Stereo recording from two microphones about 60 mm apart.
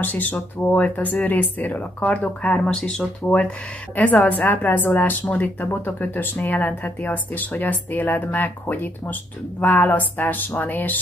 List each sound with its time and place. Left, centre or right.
0.0 s speech: left; by 3.1 s centre
3.9 s speech: left